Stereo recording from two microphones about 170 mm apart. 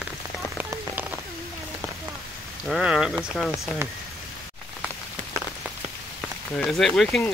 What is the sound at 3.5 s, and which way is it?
Speech, 15° right (ahead or behind).